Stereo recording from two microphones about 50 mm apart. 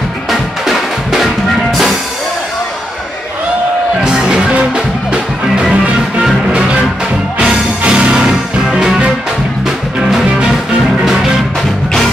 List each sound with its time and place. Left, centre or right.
0.3 s drum: centre
4.0 s music: centre
7.3 s music: centre